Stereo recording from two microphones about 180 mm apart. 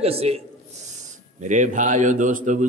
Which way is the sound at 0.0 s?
35° right (ahead or behind).